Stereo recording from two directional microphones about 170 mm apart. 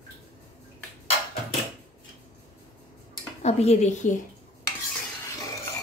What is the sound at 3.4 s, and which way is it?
Speech, 40° left (ahead or behind).